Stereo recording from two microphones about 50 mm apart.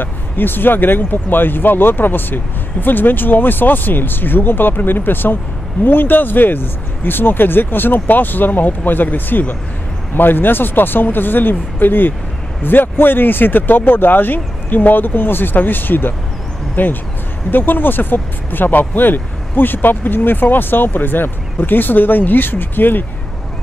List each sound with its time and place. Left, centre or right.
0.0 s speech: left